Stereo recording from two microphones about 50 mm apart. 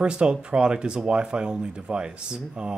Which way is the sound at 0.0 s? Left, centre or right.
Centre.